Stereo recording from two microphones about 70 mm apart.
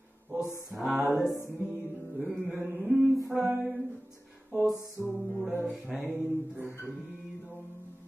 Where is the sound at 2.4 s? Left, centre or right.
Right.